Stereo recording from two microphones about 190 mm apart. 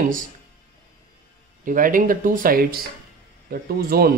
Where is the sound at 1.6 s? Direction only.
45° right (ahead or behind).